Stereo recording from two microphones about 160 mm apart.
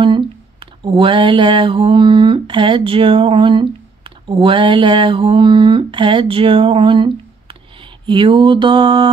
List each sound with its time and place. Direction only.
0.0 s speech: 35° right (ahead or behind)